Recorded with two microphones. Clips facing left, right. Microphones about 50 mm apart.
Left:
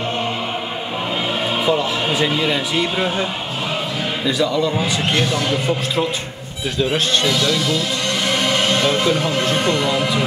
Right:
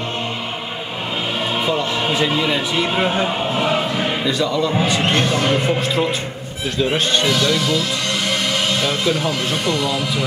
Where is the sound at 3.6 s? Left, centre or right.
Right.